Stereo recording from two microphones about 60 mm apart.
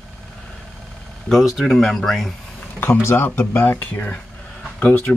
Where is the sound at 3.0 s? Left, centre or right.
Left.